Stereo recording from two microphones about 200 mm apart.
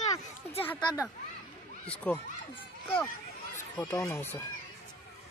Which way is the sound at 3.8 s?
15° left (ahead or behind).